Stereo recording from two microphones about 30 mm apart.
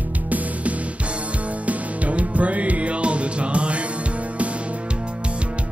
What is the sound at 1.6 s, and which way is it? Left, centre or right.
Music, right.